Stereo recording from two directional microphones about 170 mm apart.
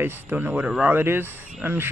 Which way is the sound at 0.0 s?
10° right (ahead or behind).